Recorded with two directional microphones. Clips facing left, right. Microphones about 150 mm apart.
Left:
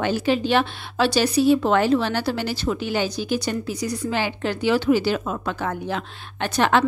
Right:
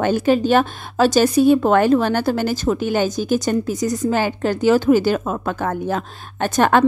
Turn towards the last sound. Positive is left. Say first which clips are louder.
# right 4 dB
turn(degrees=-45)  # may be behind; listen again after turning